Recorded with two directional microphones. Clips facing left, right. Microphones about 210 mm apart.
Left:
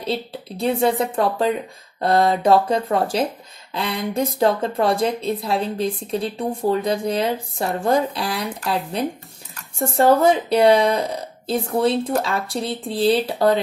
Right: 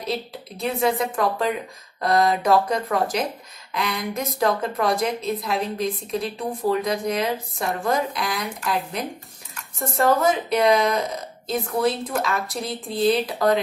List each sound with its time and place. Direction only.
0.0 s a woman's voice: 30° left (ahead or behind)
10.2 s speech: 30° left (ahead or behind)